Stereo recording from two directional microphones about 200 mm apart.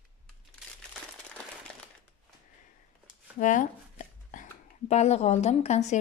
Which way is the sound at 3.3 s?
40° left (ahead or behind).